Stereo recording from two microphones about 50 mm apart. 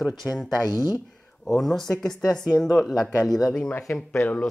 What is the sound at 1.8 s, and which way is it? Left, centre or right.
A man's voice, centre.